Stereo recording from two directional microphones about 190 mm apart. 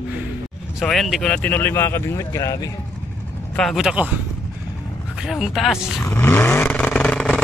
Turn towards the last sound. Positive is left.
turn(degrees=5)  # may be behind; listen again after turning